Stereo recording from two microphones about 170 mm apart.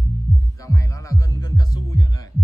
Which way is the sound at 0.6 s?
20° left (ahead or behind).